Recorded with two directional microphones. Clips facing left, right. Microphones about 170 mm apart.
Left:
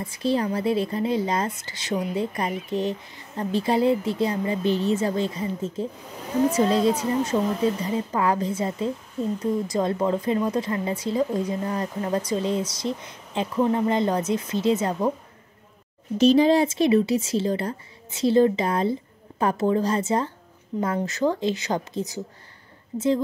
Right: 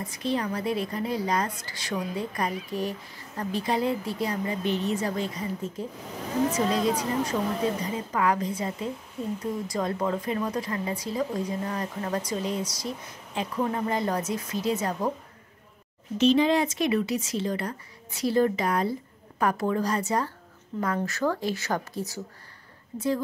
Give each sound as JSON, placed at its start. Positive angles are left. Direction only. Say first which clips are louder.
{"t": 0.0, "sound": "speech", "louder": "left 5 dB", "side_deg": 30}
{"t": 16.2, "sound": "speech", "louder": "left 4 dB", "side_deg": 35}